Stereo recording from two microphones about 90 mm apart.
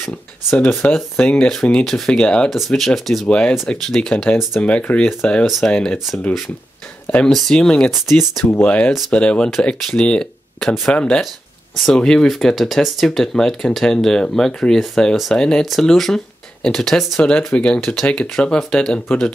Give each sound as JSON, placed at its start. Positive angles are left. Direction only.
{"t": 1.1, "sound": "speech", "side_deg": 15}
{"t": 7.2, "sound": "speech", "side_deg": 5}
{"t": 8.5, "sound": "speech", "side_deg": 20}